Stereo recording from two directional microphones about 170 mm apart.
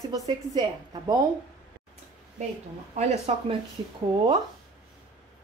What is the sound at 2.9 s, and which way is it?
Speech, 35° right (ahead or behind).